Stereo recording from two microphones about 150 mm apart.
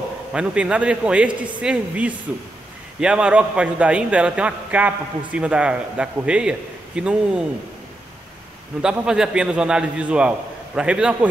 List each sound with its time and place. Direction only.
0.3 s a man's voice: 5° right (ahead or behind)
8.8 s a man's voice: 5° right (ahead or behind)